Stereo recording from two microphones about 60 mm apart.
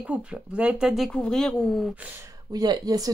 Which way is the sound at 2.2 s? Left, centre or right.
Right.